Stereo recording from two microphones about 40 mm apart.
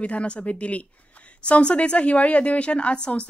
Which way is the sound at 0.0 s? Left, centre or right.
Left.